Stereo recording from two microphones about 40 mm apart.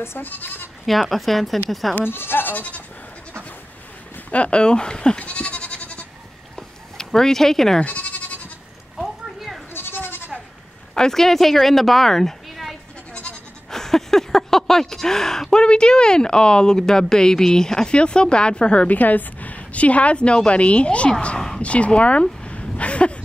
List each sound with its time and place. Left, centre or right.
0.2 s speech: left
1.1 s a woman's voice: centre
2.0 s speech: left
4.3 s speech: left
5.2 s goat: left
6.5 s a sound: centre
7.8 s bleat: left
8.9 s a sound: centre
9.8 s goat: left
11.0 s speech: centre
13.7 s a sound: centre
15.6 s speech: left
18.9 s a woman's voice: left
22.2 s a sound: left